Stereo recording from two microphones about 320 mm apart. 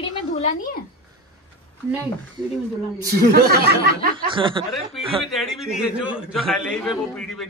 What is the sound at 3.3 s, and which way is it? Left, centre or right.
Speech, right.